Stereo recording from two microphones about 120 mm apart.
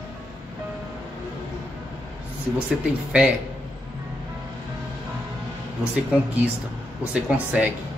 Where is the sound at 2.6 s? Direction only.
10° right (ahead or behind).